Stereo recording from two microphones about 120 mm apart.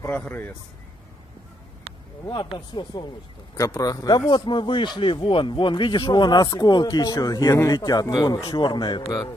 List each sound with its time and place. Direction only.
0.1 s speech: 15° left (ahead or behind)
2.7 s a man's voice: 40° left (ahead or behind)
3.5 s a man's voice: 25° left (ahead or behind)
9.0 s speech: 25° left (ahead or behind)